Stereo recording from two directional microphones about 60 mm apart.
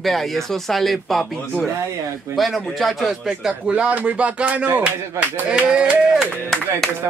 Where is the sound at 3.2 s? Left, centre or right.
Centre.